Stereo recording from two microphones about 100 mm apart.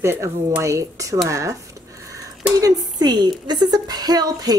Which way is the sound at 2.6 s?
40° right (ahead or behind).